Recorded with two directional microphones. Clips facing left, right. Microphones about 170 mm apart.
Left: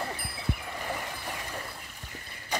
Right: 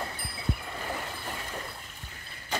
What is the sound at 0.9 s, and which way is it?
Vehicle, 10° left (ahead or behind).